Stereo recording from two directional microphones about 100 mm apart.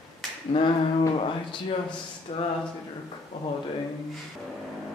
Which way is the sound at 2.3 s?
70° left (ahead or behind).